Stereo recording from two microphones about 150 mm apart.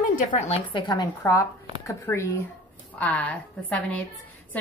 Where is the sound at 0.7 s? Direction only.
30° left (ahead or behind); by 4.0 s 10° left (ahead or behind).